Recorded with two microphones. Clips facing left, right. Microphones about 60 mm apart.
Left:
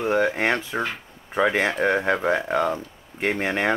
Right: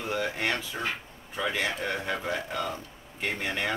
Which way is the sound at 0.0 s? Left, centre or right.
Left.